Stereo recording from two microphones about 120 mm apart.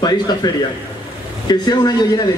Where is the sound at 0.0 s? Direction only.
35° left (ahead or behind).